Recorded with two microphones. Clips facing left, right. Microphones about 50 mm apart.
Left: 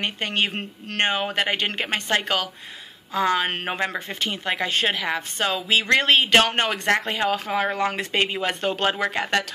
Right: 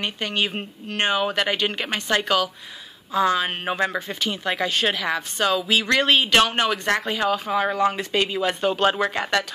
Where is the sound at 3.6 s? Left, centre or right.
Left.